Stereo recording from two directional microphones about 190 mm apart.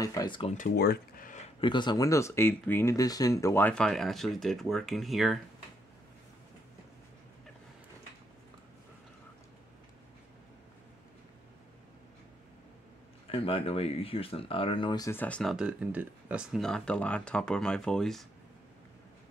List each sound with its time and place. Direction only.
0.0 s speech: 20° left (ahead or behind)
0.6 s speech: 55° left (ahead or behind)
1.6 s speech: 25° left (ahead or behind); by 5.4 s centre (ahead or behind)
13.3 s speech: 30° left (ahead or behind); by 18.2 s 5° left (ahead or behind)